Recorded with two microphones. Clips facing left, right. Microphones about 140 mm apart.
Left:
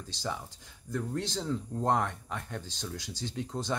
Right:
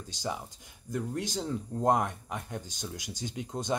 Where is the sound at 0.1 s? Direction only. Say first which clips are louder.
Right 1 dB; 15° right (ahead or behind).